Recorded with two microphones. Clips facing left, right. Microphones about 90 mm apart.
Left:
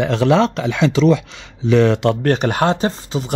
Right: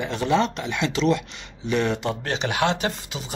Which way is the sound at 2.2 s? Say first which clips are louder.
Left 7 dB; 50° left (ahead or behind).